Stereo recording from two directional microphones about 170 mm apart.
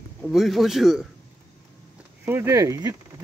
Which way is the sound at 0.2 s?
Centre (ahead or behind).